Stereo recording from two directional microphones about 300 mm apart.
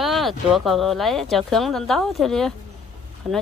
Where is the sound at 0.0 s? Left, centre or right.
Centre.